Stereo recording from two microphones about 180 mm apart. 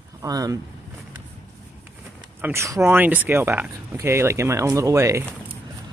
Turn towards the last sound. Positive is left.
turn(degrees=-15)  # may be behind; listen again after turning